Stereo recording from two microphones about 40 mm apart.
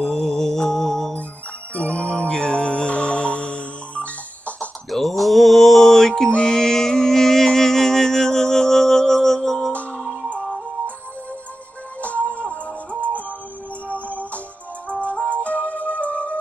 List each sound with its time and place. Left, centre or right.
0.0 s music: centre
1.9 s music: left
4.9 s mantra: centre
6.3 s music: centre
9.7 s music: left
12.0 s music: left
14.0 s music: left